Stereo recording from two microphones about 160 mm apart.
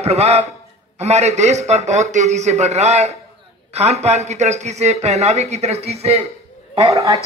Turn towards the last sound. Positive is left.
turn(degrees=-35)  # may be behind; listen again after turning